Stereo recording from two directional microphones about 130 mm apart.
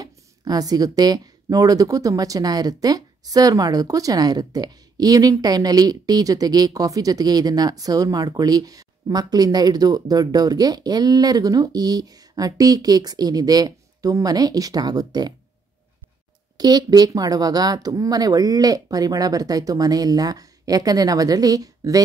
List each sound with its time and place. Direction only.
0.0 s speech: 30° right (ahead or behind)
16.5 s speech: 30° right (ahead or behind)